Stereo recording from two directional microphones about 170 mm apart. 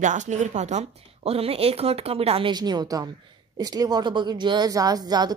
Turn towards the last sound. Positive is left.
turn(degrees=-25)  # may be behind; listen again after turning